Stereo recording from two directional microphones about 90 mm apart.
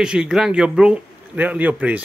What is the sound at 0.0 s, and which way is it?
A man's voice, 10° right (ahead or behind).